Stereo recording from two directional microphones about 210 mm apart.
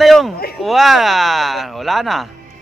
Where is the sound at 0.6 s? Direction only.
Centre (ahead or behind).